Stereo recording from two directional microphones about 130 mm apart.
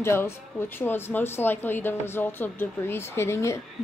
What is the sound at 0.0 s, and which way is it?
Speech, 20° left (ahead or behind).